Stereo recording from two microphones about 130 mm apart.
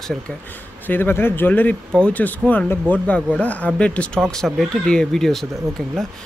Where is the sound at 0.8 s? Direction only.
15° left (ahead or behind).